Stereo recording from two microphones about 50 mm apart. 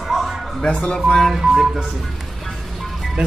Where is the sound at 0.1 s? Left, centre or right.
Centre.